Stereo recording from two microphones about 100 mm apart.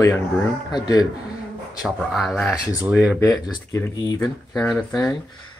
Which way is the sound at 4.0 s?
45° left (ahead or behind).